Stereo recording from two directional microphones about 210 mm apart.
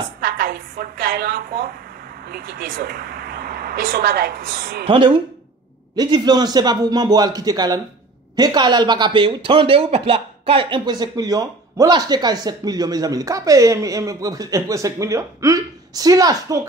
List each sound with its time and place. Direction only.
0.2 s a woman's voice: 45° right (ahead or behind)
4.8 s a man's voice: 25° right (ahead or behind)